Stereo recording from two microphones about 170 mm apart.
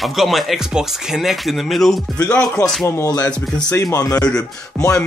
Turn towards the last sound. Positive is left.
turn(degrees=20)  # may be behind; listen again after turning